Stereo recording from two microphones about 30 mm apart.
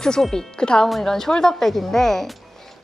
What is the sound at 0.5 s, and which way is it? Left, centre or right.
Speech, left.